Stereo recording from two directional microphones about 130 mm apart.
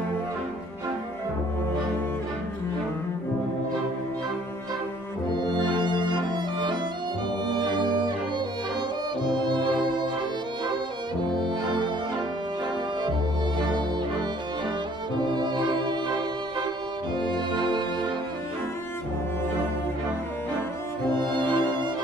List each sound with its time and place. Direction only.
5.5 s music: 35° right (ahead or behind)
9.2 s music: 35° right (ahead or behind)
11.3 s music: 35° right (ahead or behind)
13.6 s music: 35° right (ahead or behind)
15.1 s music: 35° right (ahead or behind)
21.2 s music: 35° right (ahead or behind)